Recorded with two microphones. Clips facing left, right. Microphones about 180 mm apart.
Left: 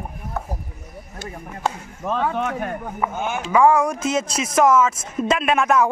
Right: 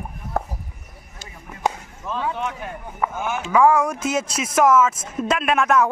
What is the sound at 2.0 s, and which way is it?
Speech, 55° left (ahead or behind).